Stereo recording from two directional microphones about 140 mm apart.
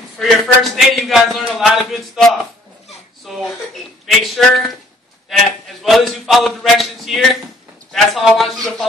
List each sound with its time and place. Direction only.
0.2 s a man's voice: centre (ahead or behind)
5.8 s a man's voice: centre (ahead or behind)